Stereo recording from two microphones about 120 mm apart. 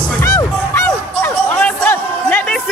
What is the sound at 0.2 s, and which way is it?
Music, 25° left (ahead or behind).